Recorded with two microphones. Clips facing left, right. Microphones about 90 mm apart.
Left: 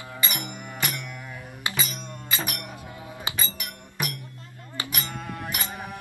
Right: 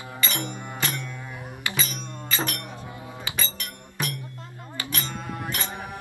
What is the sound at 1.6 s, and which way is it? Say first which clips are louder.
Music: even; 15° left (ahead or behind).